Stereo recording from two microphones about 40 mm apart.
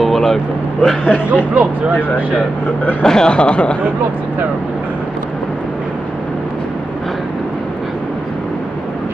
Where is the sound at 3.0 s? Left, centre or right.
Centre.